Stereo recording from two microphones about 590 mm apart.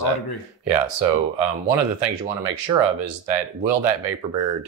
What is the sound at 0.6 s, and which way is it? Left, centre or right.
Speech, right.